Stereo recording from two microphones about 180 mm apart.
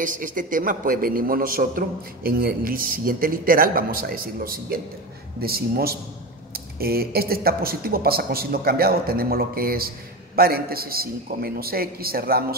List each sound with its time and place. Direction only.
0.0 s a man's voice: 50° right (ahead or behind)